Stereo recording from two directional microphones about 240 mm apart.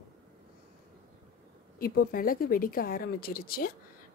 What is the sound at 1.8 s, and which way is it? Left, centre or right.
Speech, left.